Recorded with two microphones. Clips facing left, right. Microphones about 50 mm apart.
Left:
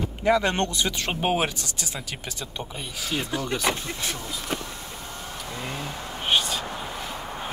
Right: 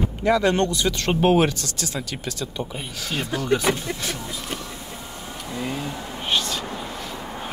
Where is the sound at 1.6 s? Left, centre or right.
Centre.